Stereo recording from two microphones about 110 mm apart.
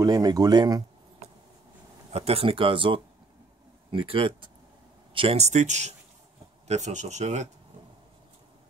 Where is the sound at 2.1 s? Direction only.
65° right (ahead or behind).